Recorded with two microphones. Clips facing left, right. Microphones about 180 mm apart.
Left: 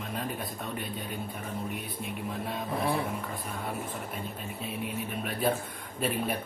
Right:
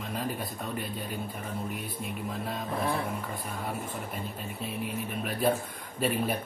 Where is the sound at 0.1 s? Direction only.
Centre (ahead or behind).